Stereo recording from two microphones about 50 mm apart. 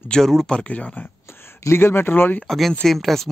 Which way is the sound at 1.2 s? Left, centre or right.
Left.